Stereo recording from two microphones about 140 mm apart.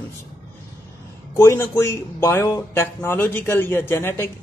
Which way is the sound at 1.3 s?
20° left (ahead or behind).